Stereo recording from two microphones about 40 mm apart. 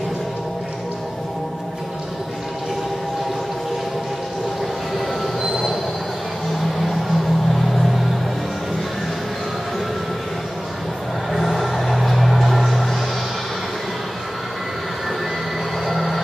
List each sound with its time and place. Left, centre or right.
4.9 s train wheels squealing: centre
6.6 s music: centre
11.3 s music: centre
15.9 s vehicle: centre